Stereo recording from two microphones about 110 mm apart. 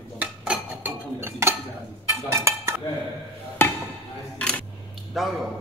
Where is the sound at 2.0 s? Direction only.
25° right (ahead or behind).